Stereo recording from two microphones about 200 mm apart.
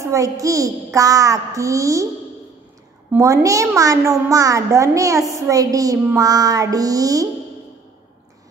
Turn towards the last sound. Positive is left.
turn(degrees=-15)  # may be behind; listen again after turning